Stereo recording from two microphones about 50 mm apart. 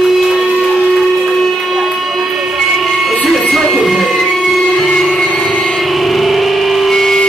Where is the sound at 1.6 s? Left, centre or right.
Centre.